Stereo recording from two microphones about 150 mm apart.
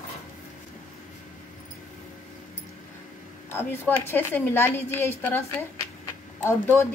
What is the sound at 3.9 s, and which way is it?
A woman's voice, 15° left (ahead or behind).